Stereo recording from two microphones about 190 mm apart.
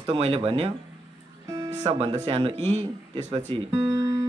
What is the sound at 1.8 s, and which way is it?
A man's voice, 25° right (ahead or behind).